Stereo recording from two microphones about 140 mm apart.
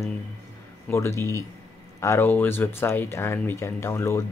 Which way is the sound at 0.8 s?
20° left (ahead or behind).